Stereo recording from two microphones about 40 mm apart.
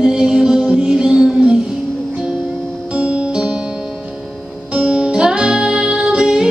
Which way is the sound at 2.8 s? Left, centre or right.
Right.